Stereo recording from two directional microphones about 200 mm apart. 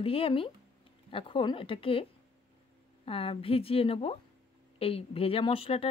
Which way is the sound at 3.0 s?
30° left (ahead or behind).